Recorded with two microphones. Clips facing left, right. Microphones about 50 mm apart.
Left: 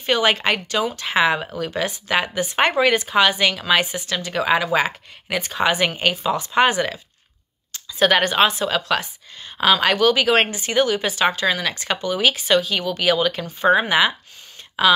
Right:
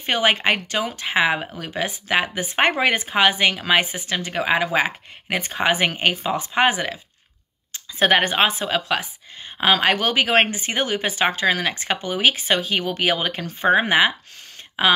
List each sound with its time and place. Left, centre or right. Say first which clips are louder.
0.0 s speech: left 1 dB; right